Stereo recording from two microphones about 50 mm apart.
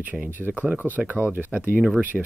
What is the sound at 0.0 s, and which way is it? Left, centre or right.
Speech, right.